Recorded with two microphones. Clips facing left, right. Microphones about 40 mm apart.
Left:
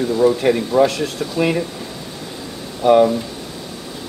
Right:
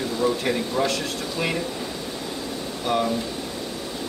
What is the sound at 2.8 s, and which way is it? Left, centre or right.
Speech, centre.